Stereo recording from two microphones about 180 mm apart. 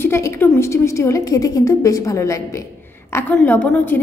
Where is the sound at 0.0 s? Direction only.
15° left (ahead or behind).